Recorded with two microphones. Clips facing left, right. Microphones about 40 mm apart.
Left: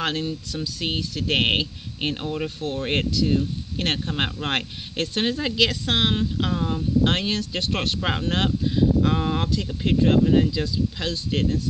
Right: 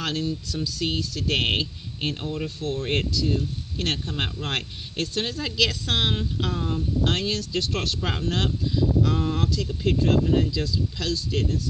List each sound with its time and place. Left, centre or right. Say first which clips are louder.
0.0 s speech: left 2 dB; left; by 7.1 s centre
7.1 s speech: left 2 dB; left